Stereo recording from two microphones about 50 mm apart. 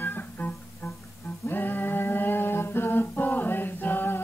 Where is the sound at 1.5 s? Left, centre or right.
Left.